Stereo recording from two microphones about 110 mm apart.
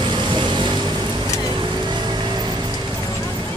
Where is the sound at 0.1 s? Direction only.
45° right (ahead or behind).